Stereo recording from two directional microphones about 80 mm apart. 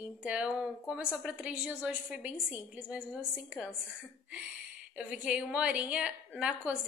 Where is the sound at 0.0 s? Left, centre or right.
Centre.